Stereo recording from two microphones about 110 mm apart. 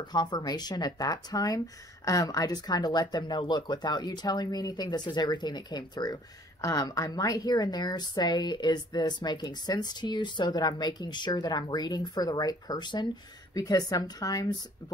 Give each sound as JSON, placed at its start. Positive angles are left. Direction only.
{"t": 0.1, "sound": "a woman's voice", "side_deg": 40}